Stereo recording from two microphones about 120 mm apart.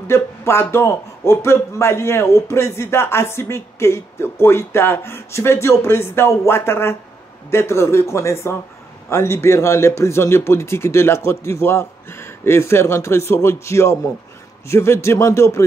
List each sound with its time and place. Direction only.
0.0 s a man's voice: 20° left (ahead or behind)